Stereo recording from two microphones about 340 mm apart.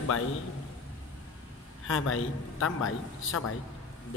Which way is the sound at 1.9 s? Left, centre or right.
Left.